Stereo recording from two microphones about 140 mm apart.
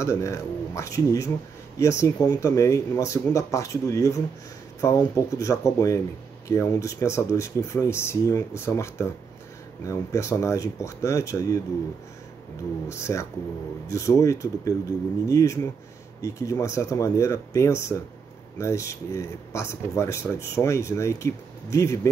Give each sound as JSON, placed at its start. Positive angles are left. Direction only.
{"t": 0.0, "sound": "speech", "side_deg": 20}
{"t": 12.8, "sound": "speech", "side_deg": 20}